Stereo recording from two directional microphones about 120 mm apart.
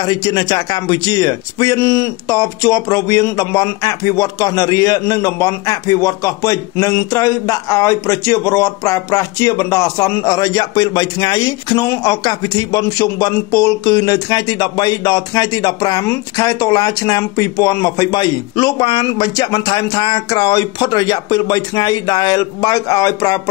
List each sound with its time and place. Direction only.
0.0 s a man's voice: 35° left (ahead or behind)